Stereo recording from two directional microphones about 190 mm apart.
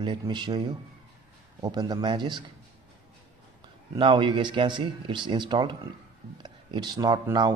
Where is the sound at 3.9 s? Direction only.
25° right (ahead or behind).